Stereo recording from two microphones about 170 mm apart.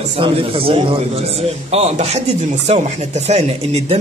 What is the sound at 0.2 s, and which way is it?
A man's voice, 30° right (ahead or behind).